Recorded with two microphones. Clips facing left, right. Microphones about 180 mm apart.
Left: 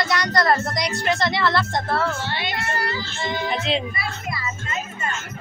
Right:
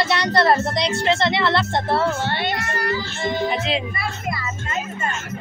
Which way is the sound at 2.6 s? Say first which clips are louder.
Right 1 dB; 30° left (ahead or behind).